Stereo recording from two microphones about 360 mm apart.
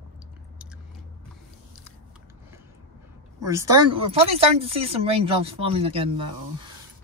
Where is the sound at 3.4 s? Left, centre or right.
Centre.